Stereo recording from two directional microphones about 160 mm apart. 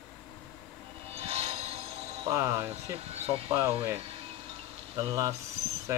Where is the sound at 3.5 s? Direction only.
15° right (ahead or behind).